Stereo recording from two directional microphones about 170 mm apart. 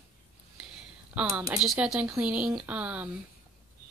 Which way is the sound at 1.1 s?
5° right (ahead or behind).